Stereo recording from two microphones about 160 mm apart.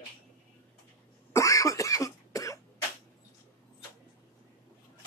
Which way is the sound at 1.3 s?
20° left (ahead or behind).